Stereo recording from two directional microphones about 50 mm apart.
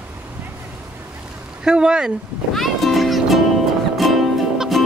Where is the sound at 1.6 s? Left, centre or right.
Centre.